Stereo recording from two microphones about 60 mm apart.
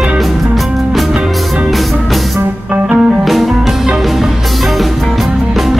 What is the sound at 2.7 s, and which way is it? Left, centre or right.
Music, right.